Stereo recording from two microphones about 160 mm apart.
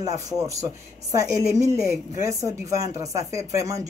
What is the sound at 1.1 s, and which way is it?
A woman's voice, 20° right (ahead or behind).